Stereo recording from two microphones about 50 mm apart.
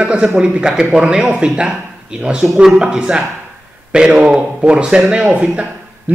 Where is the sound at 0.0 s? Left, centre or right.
Centre.